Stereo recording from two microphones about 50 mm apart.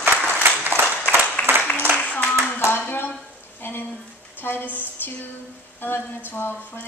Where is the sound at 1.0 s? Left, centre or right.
Left.